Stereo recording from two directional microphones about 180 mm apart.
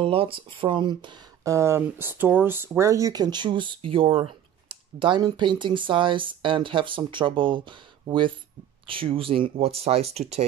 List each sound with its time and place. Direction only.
0.0 s speech: 30° right (ahead or behind)